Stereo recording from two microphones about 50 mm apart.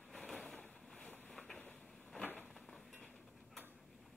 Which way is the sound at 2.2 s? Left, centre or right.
Left.